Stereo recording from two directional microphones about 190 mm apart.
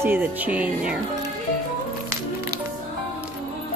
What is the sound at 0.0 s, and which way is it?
Speech, 10° right (ahead or behind).